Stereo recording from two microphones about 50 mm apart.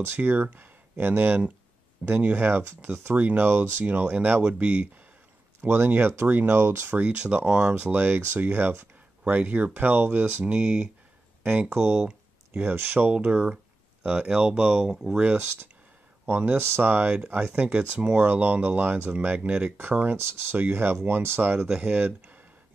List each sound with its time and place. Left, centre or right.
0.0 s speech: right
2.0 s speech: right
2.3 s speech: right
5.6 s speech: right
7.0 s speech: right
7.8 s speech: right
10.4 s speech: centre
11.7 s speech: right
13.1 s speech: right; by 15.1 s centre
15.3 s speech: right
18.2 s speech: right
20.2 s speech: right